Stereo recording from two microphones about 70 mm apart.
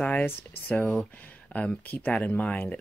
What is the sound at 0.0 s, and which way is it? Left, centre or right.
Speech, left.